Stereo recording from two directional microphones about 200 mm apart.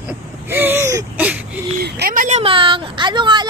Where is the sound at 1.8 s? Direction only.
45° right (ahead or behind).